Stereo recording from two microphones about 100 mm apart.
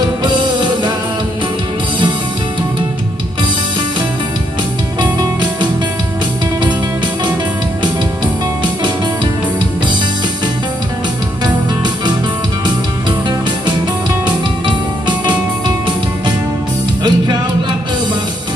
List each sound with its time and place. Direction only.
0.3 s music: 45° right (ahead or behind)
5.2 s music: 45° right (ahead or behind)
14.2 s music: 50° right (ahead or behind)
17.0 s music: 45° right (ahead or behind)